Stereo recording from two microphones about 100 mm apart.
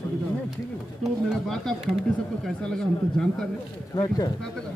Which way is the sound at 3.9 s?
45° left (ahead or behind).